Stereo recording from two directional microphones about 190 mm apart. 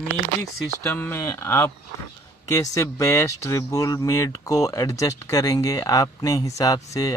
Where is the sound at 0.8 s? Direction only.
10° left (ahead or behind).